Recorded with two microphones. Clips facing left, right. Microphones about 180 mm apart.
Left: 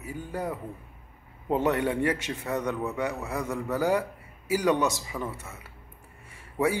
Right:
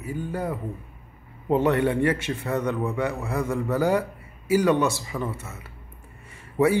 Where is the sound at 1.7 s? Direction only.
10° left (ahead or behind).